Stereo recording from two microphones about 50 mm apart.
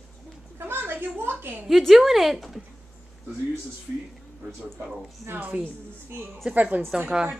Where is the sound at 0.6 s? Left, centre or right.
Right.